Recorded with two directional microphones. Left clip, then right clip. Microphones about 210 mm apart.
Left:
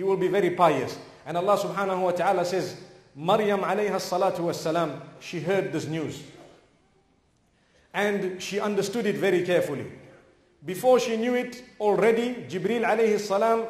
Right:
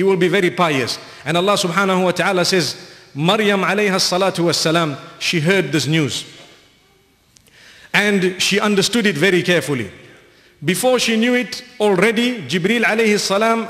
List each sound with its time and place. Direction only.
0.0 s a man's voice: 25° right (ahead or behind)
7.9 s a man's voice: 25° right (ahead or behind)